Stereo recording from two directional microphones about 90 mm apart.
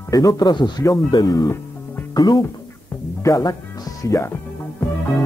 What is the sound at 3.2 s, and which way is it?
Speech, 45° left (ahead or behind).